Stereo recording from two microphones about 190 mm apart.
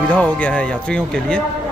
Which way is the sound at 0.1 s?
5° left (ahead or behind).